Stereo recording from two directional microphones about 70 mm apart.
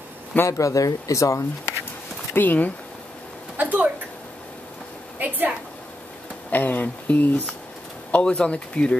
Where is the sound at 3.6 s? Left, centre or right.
Right.